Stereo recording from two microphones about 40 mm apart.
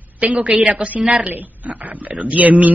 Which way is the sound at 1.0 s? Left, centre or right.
Right.